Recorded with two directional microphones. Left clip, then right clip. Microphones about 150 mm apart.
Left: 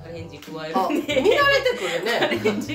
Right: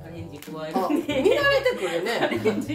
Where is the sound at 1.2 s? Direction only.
5° left (ahead or behind).